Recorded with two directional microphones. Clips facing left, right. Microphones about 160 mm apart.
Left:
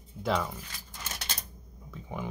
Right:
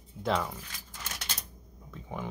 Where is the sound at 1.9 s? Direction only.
5° left (ahead or behind).